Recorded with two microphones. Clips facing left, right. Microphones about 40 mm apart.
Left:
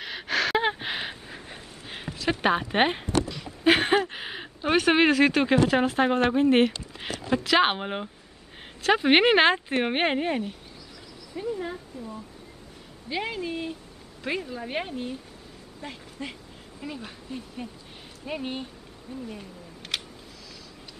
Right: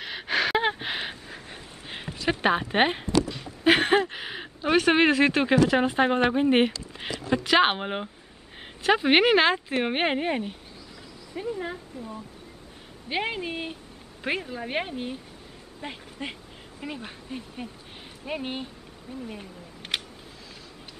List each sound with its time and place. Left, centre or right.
0.0 s gasp: centre
1.9 s speech: centre
3.6 s a sound: centre
4.1 s speech: centre
8.9 s a woman's voice: centre
13.1 s speech: right
14.4 s speech: centre